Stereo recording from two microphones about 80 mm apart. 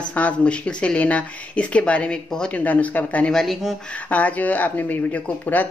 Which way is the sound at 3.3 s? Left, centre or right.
Centre.